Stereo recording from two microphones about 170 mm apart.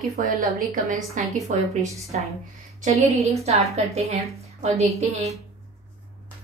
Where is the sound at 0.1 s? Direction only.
55° right (ahead or behind).